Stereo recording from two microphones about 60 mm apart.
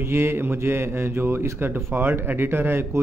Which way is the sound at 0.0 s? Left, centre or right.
Right.